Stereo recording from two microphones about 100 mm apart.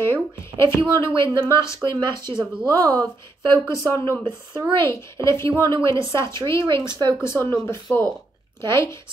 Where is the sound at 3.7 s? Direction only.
25° left (ahead or behind).